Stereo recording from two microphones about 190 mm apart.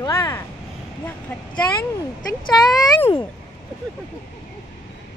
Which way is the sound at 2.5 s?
25° left (ahead or behind).